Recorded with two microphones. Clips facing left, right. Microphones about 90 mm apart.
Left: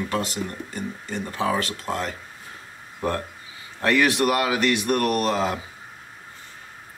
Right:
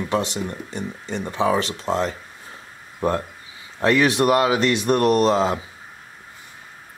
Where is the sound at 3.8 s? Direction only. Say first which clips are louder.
Right 3 dB; 20° right (ahead or behind).